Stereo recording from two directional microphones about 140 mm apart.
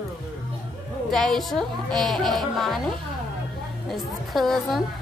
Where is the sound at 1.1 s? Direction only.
5° left (ahead or behind).